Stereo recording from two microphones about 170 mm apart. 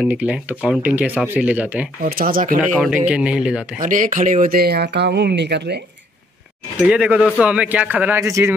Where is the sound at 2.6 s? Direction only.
5° right (ahead or behind).